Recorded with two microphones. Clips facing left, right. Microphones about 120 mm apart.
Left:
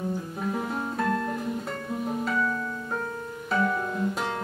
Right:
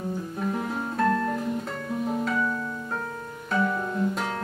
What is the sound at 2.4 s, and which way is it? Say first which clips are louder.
Music: even; 20° right (ahead or behind).